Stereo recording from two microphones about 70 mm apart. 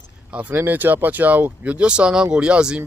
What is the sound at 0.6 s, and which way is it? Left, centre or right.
Speech, right.